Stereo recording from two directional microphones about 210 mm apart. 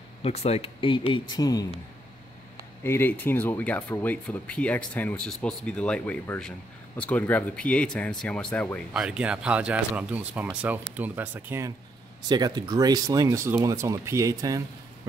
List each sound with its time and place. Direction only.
0.2 s speech: 30° left (ahead or behind)
2.8 s speech: 10° left (ahead or behind); by 14.6 s 15° right (ahead or behind)